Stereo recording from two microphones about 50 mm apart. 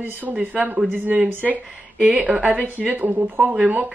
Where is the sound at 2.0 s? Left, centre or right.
Right.